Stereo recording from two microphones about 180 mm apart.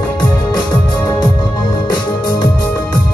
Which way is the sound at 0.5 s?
25° left (ahead or behind).